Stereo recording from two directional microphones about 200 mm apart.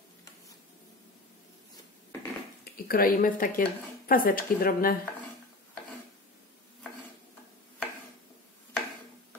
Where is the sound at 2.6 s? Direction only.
45° left (ahead or behind).